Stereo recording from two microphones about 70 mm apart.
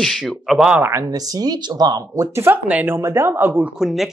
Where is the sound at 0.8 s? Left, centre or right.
Right.